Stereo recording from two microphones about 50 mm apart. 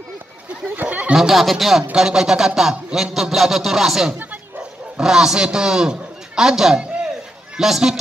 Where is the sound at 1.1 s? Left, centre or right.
Centre.